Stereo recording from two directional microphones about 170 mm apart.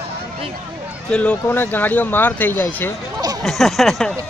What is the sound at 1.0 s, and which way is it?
Speech, 5° left (ahead or behind).